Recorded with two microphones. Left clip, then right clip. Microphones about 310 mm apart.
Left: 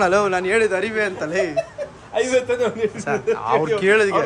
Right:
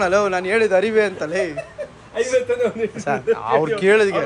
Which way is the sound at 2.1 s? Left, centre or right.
Centre.